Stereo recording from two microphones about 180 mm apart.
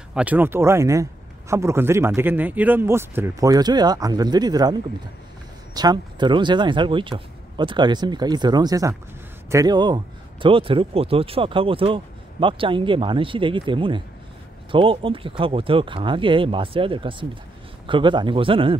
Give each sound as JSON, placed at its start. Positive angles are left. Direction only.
{"t": 0.1, "sound": "speech", "side_deg": -10}
{"t": 5.8, "sound": "a man's voice", "side_deg": -25}